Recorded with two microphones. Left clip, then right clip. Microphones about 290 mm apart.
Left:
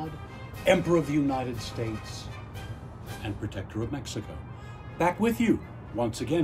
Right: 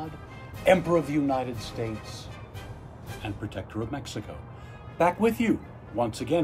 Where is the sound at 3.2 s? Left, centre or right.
Centre.